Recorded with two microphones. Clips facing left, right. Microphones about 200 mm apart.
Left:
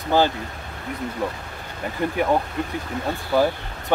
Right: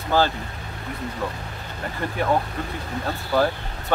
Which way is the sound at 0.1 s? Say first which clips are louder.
Left 2 dB; 15° left (ahead or behind).